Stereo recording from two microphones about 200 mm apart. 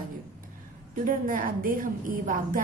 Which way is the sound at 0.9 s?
45° right (ahead or behind).